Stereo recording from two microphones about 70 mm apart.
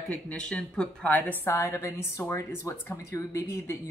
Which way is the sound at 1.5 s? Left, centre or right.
Left.